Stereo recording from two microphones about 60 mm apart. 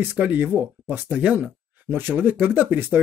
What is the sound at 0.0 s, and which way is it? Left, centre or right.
Speech, right.